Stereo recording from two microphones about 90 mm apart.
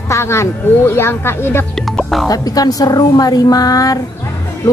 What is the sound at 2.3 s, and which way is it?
A woman's voice, 45° left (ahead or behind).